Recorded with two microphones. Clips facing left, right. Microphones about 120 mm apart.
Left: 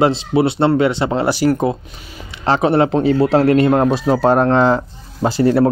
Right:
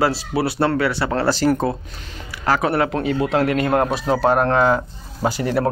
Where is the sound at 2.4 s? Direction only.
25° left (ahead or behind).